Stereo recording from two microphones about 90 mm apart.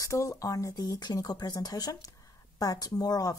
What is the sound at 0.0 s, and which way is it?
Speech, 35° left (ahead or behind).